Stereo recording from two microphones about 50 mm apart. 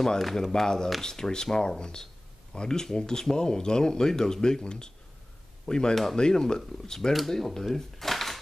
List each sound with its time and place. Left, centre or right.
0.2 s speech: centre